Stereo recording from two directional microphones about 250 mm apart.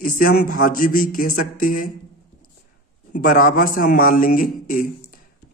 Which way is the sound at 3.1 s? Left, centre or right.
Left.